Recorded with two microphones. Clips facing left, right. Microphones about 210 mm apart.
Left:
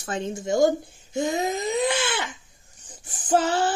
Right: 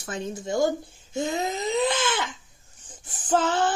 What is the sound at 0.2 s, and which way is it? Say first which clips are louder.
Speech: left 4 dB; 25° left (ahead or behind).